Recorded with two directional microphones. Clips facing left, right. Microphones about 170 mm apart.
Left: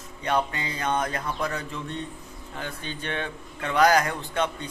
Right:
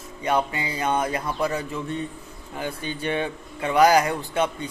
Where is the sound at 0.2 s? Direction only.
10° right (ahead or behind).